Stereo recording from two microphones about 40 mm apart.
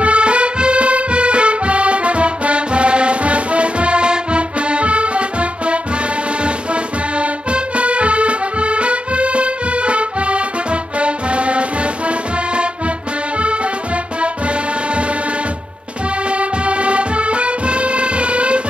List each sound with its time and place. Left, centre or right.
0.0 s music: right
14.2 s music: right
16.3 s music: right